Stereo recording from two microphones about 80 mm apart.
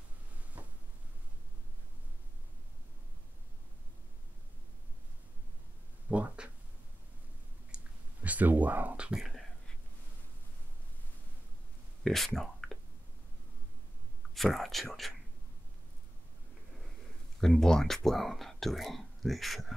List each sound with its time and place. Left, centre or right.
6.0 s speech: centre
7.7 s a sound: centre
12.0 s speech: centre
12.4 s whispering: centre
14.3 s speech: centre
17.4 s speech: centre